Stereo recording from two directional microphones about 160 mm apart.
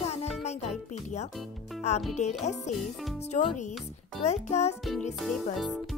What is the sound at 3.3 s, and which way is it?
Speech, 45° left (ahead or behind).